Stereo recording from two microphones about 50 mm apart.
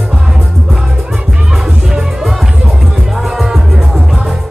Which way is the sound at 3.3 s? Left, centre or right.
Centre.